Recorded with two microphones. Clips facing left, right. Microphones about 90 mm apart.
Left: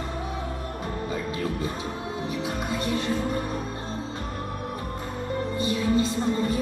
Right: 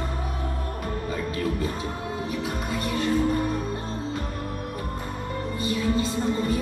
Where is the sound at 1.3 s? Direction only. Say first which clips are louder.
Right 2 dB; 25° left (ahead or behind).